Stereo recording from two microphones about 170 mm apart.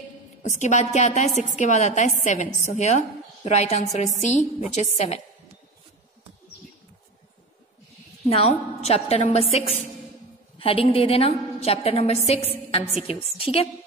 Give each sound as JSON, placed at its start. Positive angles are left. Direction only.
{"t": 0.4, "sound": "a woman's voice", "side_deg": 45}
{"t": 8.3, "sound": "a woman's voice", "side_deg": 35}